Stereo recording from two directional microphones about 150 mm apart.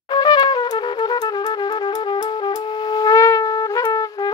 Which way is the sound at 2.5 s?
30° left (ahead or behind).